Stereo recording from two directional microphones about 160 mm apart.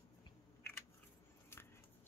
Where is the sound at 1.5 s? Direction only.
15° left (ahead or behind).